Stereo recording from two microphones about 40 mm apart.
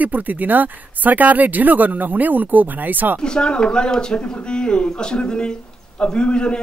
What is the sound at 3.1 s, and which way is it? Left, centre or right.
Speech, left.